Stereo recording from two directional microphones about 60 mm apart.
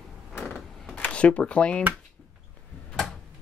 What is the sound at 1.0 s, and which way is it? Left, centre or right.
Speech, centre.